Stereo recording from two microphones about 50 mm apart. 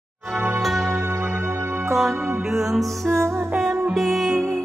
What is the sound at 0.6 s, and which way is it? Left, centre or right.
Music, centre.